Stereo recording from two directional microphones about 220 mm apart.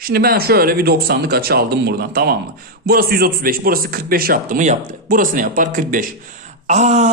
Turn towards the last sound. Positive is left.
turn(degrees=-30)  # may be behind; listen again after turning